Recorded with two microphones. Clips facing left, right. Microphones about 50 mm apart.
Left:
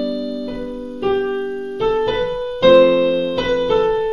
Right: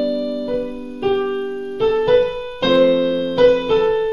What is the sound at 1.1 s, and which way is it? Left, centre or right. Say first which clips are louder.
Keyboard: even; centre.